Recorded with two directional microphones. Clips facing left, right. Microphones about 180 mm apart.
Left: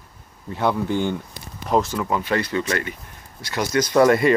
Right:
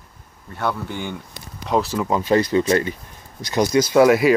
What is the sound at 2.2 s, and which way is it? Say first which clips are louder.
Speech: right 6 dB; 35° right (ahead or behind).